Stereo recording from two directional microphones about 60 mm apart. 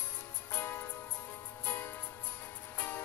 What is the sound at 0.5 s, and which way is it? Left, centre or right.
Music, left.